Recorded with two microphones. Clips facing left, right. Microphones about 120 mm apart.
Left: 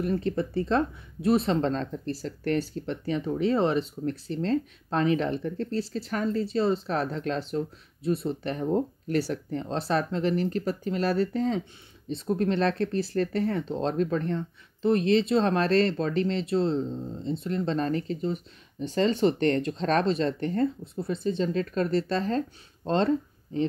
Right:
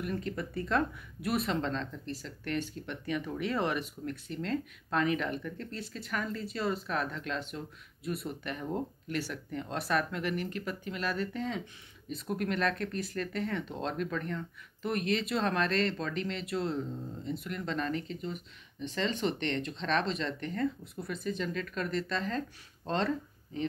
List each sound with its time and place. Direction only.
0.0 s speech: 35° left (ahead or behind)